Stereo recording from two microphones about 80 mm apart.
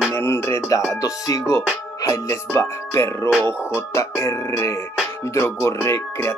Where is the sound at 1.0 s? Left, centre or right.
Left.